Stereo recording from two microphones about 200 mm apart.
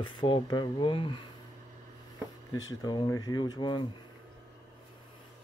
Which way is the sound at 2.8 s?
20° left (ahead or behind).